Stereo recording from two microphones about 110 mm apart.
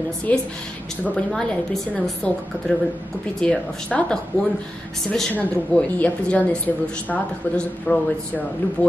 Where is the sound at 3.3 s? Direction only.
10° left (ahead or behind).